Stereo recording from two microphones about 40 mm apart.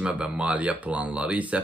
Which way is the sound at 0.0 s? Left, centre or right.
Right.